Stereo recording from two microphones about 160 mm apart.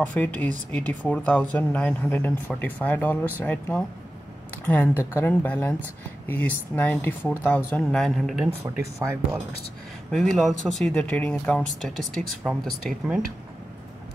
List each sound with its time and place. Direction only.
0.0 s speech: 10° left (ahead or behind)
8.6 s speech: 15° right (ahead or behind)
10.1 s speech: centre (ahead or behind)